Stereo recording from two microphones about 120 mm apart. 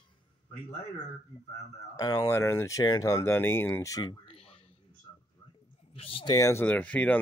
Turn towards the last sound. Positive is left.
turn(degrees=10)  # may be behind; listen again after turning